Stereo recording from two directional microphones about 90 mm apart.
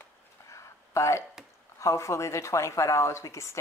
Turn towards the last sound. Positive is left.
turn(degrees=35)  # may be behind; listen again after turning